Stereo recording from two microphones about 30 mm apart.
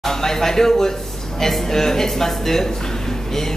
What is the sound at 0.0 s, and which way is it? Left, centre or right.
A man's voice, centre.